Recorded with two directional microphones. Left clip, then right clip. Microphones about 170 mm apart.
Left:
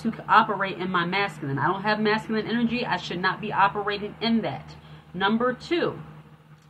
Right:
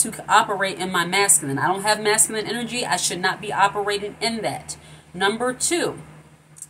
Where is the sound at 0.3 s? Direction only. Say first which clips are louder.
Right 2 dB; 30° right (ahead or behind).